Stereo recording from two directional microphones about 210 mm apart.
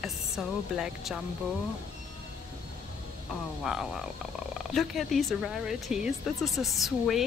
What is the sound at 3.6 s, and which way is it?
Speech, centre (ahead or behind).